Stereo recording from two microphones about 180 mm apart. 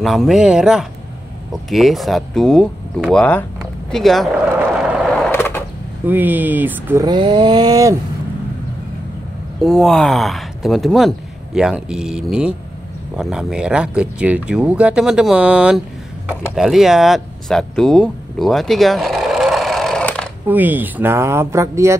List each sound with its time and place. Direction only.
0.0 s speech: centre (ahead or behind)
5.1 s skateboard: 10° left (ahead or behind)
6.0 s speech: 10° right (ahead or behind)
7.1 s a sound: 25° right (ahead or behind)
9.6 s speech: centre (ahead or behind)
20.4 s speech: 10° right (ahead or behind)